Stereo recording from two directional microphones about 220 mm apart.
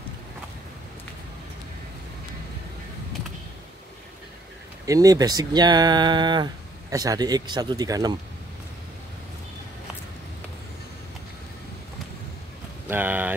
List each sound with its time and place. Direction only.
4.8 s speech: 15° right (ahead or behind)
12.8 s speech: 10° right (ahead or behind)